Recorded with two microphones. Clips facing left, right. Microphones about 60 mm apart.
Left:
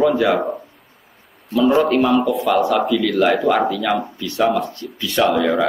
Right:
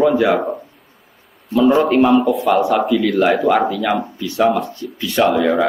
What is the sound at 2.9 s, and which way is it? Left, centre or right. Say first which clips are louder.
Speech: right 1 dB; right.